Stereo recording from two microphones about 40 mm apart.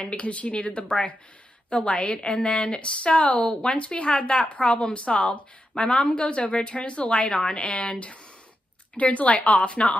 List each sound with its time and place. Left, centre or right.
0.0 s speech: left